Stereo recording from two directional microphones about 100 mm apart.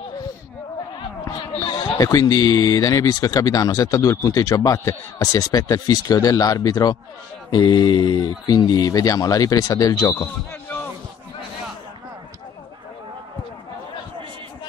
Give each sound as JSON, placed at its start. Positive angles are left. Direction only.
{"t": 1.6, "sound": "speech", "side_deg": 35}
{"t": 7.5, "sound": "speech", "side_deg": 50}